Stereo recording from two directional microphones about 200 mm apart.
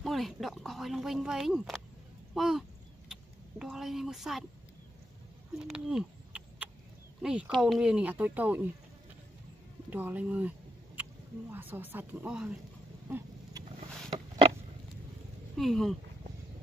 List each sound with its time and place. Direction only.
0.0 s speech: centre (ahead or behind)
5.6 s a sound: centre (ahead or behind)
7.2 s speech: 5° right (ahead or behind)
9.8 s speech: 10° right (ahead or behind)
11.5 s speech: 10° right (ahead or behind)
13.1 s a sound: 15° right (ahead or behind)
15.5 s speech: centre (ahead or behind)